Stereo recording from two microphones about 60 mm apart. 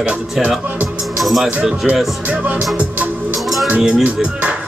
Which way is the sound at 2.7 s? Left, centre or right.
Right.